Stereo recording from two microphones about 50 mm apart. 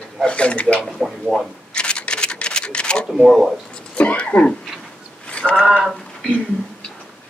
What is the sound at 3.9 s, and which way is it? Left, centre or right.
Speech, left.